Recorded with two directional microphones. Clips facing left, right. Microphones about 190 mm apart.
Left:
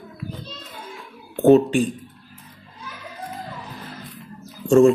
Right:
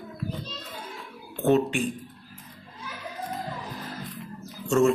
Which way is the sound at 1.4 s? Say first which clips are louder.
Left 8 dB; 35° left (ahead or behind).